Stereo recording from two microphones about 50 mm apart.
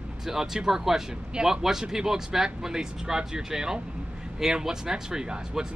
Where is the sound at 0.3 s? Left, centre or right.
Centre.